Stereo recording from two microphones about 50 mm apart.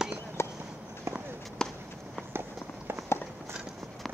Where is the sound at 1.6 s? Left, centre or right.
Centre.